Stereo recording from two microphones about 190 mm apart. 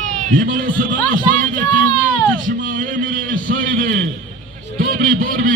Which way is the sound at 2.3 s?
45° right (ahead or behind).